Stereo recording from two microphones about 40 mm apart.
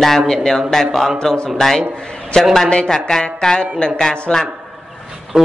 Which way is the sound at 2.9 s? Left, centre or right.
Centre.